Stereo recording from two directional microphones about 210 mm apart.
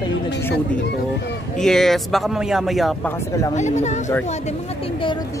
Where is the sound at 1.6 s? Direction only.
Centre (ahead or behind).